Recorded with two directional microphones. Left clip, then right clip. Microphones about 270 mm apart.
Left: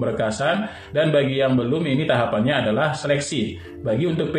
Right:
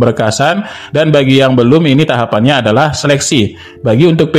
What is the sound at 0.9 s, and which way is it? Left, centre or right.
A man's voice, right.